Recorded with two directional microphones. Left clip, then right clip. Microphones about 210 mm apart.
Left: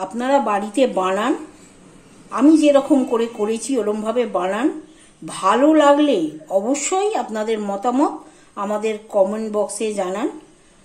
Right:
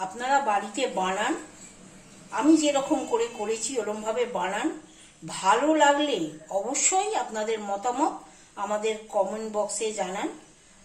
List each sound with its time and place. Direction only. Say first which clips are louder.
0.2 s a woman's voice: left 6 dB; 50° left (ahead or behind)
2.3 s a woman's voice: left 9 dB; 50° left (ahead or behind)